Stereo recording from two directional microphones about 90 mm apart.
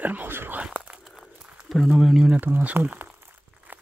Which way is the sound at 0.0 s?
20° right (ahead or behind).